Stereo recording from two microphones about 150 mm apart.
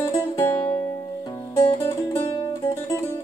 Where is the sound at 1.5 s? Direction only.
35° left (ahead or behind).